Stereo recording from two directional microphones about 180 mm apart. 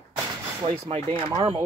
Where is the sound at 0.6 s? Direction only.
35° right (ahead or behind).